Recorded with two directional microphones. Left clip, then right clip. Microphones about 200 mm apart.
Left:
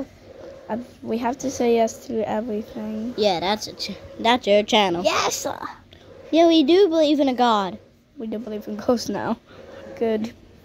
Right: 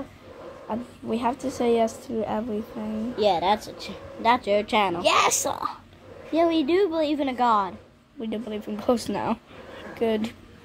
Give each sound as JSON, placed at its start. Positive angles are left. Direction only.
{"t": 0.7, "sound": "a woman's voice", "side_deg": 15}
{"t": 3.2, "sound": "a woman's voice", "side_deg": 55}
{"t": 5.0, "sound": "a woman's voice", "side_deg": 5}
{"t": 6.3, "sound": "a woman's voice", "side_deg": 50}
{"t": 8.2, "sound": "a woman's voice", "side_deg": 10}